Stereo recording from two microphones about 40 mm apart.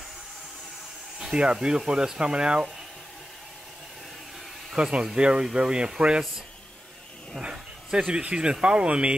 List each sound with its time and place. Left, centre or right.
1.3 s speech: right
4.8 s speech: right
7.4 s bow-wow: centre
8.1 s speech: right